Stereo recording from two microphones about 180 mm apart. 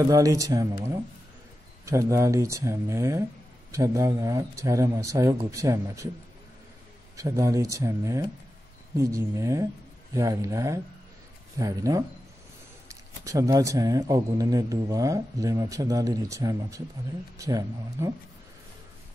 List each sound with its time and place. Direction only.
0.1 s a man's voice: 20° right (ahead or behind)
1.9 s speech: 15° right (ahead or behind)
7.2 s a man's voice: 15° right (ahead or behind)